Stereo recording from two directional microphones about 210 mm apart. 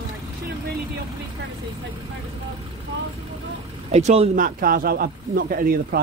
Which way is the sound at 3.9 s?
30° right (ahead or behind).